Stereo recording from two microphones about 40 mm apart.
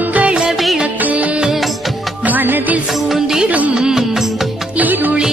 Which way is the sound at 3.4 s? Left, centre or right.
Right.